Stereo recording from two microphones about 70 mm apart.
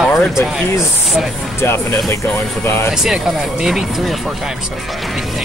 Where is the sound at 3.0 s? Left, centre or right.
Centre.